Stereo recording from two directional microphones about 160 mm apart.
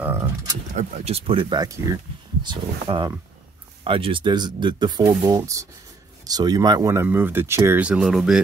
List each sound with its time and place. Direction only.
0.0 s speech: 15° right (ahead or behind)
0.7 s speech: 40° right (ahead or behind); by 8.4 s centre (ahead or behind)